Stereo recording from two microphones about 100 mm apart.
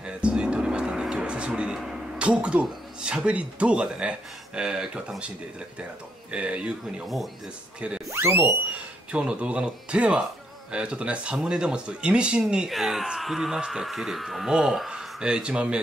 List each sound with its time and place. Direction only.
0.0 s speech: 10° right (ahead or behind)
6.3 s speech: 10° right (ahead or behind)
8.1 s speech: 25° right (ahead or behind)
9.1 s speech: 10° right (ahead or behind)